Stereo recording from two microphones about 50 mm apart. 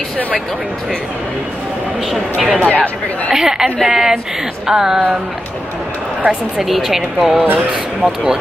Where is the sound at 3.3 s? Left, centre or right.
Centre.